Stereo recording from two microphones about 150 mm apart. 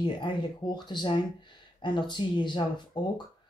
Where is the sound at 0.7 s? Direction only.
30° left (ahead or behind).